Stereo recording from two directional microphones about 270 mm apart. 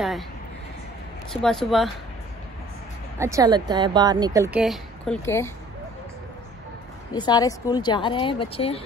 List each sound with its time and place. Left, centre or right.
1.3 s speech: centre
3.2 s speech: centre
7.2 s a woman's voice: centre